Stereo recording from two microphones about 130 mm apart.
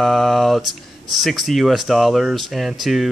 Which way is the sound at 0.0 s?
Centre (ahead or behind).